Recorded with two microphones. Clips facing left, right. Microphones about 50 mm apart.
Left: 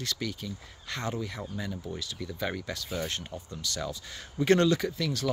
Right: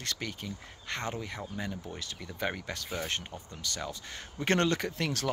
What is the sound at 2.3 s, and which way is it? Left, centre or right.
Speech, right.